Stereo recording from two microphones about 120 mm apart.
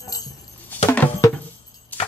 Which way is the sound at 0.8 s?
20° left (ahead or behind).